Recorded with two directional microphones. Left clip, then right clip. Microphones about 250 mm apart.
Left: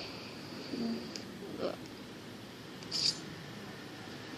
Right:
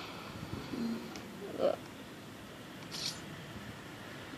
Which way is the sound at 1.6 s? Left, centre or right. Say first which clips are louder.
Right 7 dB; centre.